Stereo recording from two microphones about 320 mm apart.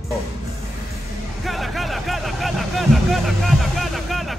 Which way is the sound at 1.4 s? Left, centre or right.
Centre.